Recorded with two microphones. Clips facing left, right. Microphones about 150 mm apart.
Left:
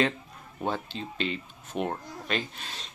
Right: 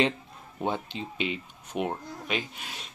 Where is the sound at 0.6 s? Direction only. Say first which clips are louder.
Right 1 dB; 15° right (ahead or behind).